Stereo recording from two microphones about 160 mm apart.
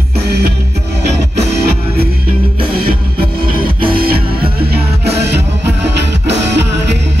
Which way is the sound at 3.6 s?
30° right (ahead or behind).